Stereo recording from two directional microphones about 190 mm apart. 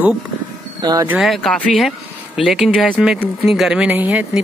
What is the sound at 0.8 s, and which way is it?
Speech, 20° right (ahead or behind).